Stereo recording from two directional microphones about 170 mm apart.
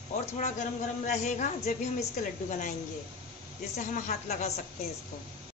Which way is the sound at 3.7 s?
45° left (ahead or behind).